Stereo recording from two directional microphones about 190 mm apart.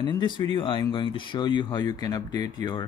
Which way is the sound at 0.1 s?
25° left (ahead or behind).